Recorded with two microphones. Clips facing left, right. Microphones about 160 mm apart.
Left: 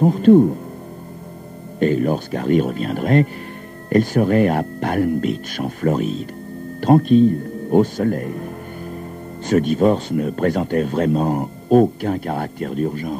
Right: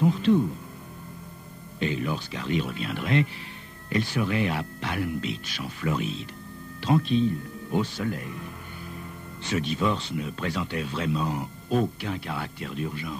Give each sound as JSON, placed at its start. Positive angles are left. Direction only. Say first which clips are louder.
{"t": 0.0, "sound": "speech", "louder": "left 10 dB", "side_deg": 45}
{"t": 1.8, "sound": "speech", "louder": "left 11 dB", "side_deg": 45}